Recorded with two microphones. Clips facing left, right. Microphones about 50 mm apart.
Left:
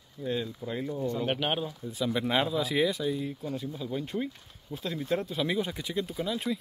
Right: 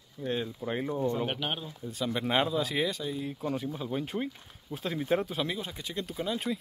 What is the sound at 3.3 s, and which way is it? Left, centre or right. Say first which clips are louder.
Speech: right 2 dB; right.